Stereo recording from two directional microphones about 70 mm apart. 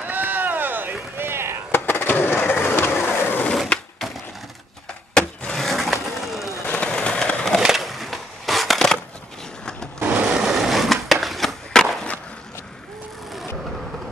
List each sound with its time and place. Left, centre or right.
0.0 s boat: right
1.1 s chop: right
1.7 s skateboard: left
5.1 s vehicle: centre
6.6 s skateboard: left
7.6 s crushing: centre
9.9 s sewing machine: right
10.3 s skateboard: centre